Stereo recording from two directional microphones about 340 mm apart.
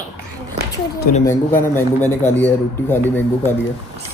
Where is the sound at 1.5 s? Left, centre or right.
Centre.